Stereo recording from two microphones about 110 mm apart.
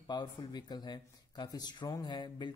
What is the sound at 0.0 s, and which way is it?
Speech, 40° left (ahead or behind).